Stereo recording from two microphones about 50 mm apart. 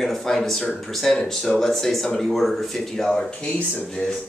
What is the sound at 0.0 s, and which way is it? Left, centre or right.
A man's voice, centre.